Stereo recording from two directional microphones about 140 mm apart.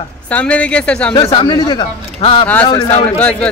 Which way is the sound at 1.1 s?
35° left (ahead or behind).